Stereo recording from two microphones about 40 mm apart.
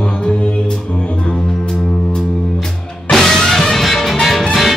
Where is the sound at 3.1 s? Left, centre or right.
Centre.